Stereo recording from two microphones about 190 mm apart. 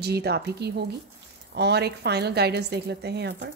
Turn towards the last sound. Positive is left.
turn(degrees=-60)  # may be behind; listen again after turning